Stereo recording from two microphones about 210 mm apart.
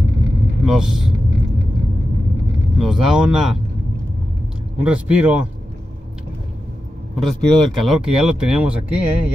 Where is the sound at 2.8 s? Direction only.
Centre (ahead or behind).